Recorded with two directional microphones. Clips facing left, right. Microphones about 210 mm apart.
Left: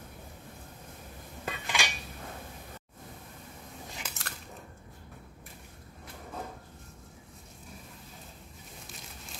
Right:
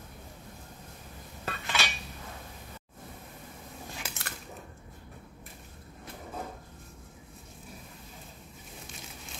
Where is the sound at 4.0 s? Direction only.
5° right (ahead or behind).